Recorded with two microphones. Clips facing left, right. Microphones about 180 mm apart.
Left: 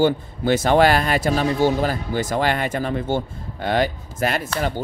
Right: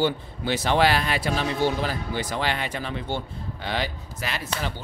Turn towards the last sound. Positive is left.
turn(degrees=50)  # may be behind; listen again after turning